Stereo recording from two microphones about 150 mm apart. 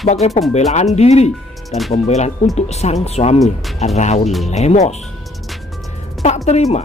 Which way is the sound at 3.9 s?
50° left (ahead or behind).